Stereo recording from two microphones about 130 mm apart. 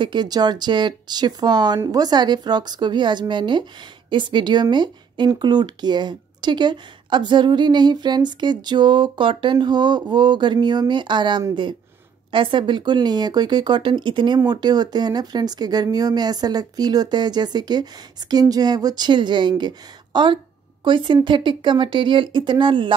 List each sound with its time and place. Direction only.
0.0 s speech: 35° right (ahead or behind)